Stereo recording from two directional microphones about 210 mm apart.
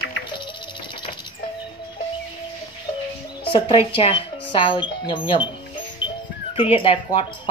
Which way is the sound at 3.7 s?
25° left (ahead or behind).